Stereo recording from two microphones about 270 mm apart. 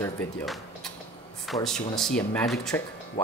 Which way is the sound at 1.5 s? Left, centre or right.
Left.